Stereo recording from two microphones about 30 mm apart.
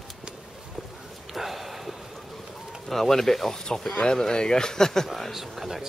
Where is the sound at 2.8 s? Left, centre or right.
Centre.